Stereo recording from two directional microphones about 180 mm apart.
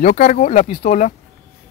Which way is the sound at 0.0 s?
40° left (ahead or behind).